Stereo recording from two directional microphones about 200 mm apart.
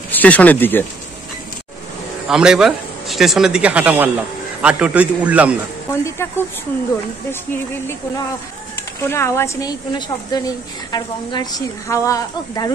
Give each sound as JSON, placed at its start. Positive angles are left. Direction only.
{"t": 0.1, "sound": "speech", "side_deg": 10}
{"t": 2.2, "sound": "a man's voice", "side_deg": -5}
{"t": 5.9, "sound": "a woman's voice", "side_deg": 15}
{"t": 9.0, "sound": "a woman's voice", "side_deg": 15}